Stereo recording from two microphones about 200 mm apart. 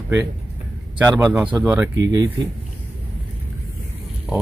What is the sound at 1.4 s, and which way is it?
Speech, 5° right (ahead or behind).